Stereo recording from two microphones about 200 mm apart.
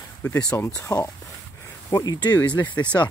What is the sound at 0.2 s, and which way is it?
Speech, 10° left (ahead or behind).